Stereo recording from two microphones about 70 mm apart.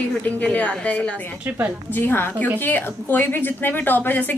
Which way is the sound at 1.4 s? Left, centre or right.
Right.